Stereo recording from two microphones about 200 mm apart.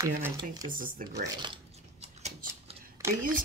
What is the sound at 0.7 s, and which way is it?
Speech, 45° right (ahead or behind).